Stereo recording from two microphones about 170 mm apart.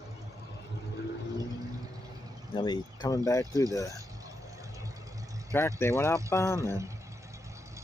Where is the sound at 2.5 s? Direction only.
25° left (ahead or behind).